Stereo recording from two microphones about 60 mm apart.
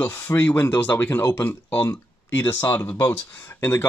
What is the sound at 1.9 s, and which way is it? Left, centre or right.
Speech, left.